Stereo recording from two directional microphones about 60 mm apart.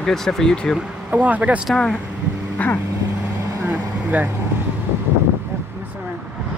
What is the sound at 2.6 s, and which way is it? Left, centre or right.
Vehicle, left.